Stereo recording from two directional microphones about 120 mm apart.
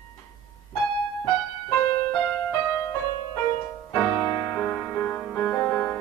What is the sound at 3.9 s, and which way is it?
Music, 15° left (ahead or behind).